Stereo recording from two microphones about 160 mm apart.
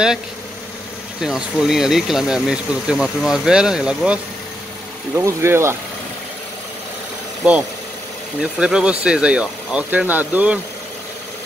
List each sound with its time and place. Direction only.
1.2 s speech: 5° right (ahead or behind)
5.1 s speech: 15° right (ahead or behind)
8.4 s speech: 5° right (ahead or behind)